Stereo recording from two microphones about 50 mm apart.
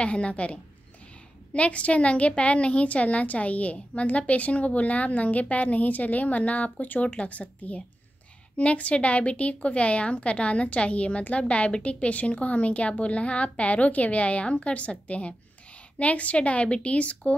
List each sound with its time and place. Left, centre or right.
0.0 s a woman's voice: left